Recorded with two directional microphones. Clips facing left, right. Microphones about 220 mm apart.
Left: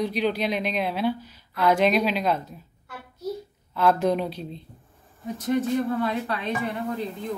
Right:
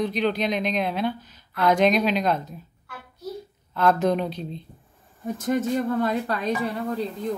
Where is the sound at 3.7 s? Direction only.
5° left (ahead or behind).